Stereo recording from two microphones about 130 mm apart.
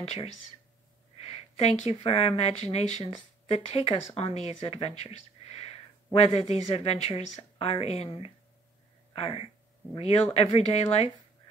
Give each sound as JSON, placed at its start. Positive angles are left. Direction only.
{"t": 1.2, "sound": "speech", "side_deg": 55}
{"t": 9.1, "sound": "speech", "side_deg": 45}